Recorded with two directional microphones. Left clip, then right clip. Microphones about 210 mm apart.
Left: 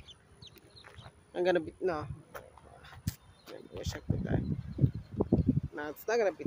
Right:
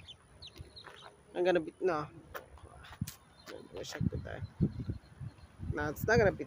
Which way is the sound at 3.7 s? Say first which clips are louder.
Left 1 dB; 10° left (ahead or behind).